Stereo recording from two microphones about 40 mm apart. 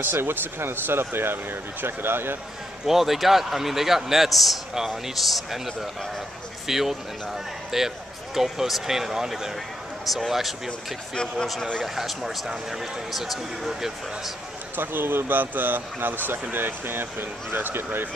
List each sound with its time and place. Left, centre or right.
0.0 s speech: right
2.9 s a man's voice: centre
14.8 s speech: right